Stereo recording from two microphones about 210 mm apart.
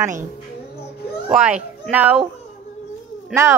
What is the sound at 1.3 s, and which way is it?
Speech, 5° right (ahead or behind).